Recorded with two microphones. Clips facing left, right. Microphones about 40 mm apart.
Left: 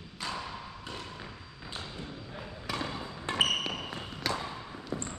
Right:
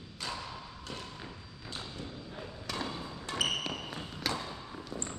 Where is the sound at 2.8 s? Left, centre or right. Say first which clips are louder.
Left 3 dB; left.